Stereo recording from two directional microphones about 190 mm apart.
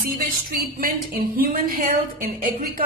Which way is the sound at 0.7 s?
50° right (ahead or behind).